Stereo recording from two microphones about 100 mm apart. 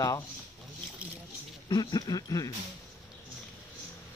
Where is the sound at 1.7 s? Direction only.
45° left (ahead or behind).